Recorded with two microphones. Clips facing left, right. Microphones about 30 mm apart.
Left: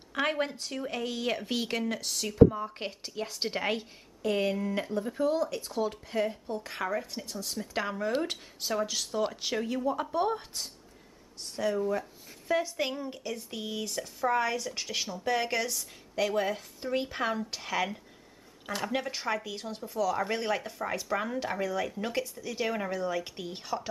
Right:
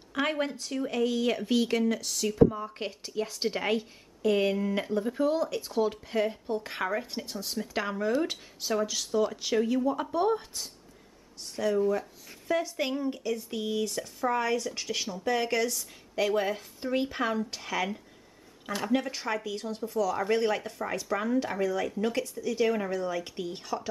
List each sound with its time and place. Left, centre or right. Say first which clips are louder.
0.1 s speech: right 1 dB; centre
7.5 s speech: right 2 dB; centre